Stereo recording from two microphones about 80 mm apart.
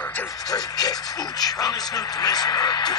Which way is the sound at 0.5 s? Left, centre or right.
Left.